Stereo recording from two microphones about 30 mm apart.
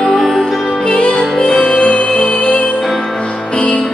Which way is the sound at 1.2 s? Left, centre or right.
Left.